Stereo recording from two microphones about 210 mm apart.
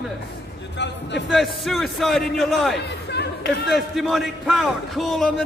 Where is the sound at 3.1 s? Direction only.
50° left (ahead or behind).